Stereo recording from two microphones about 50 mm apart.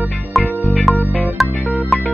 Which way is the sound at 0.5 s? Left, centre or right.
Left.